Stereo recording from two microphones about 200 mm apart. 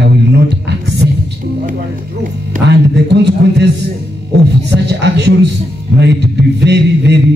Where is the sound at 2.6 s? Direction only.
60° right (ahead or behind).